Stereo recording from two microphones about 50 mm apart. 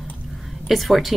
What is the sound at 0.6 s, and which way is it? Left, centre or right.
Speech, centre.